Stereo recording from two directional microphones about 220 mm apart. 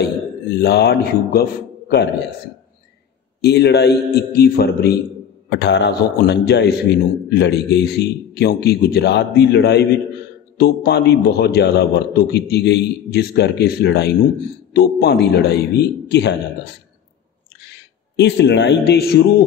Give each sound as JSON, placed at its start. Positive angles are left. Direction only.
{"t": 0.6, "sound": "a man's voice", "side_deg": 50}
{"t": 3.3, "sound": "a man's voice", "side_deg": 50}
{"t": 18.1, "sound": "a man's voice", "side_deg": 50}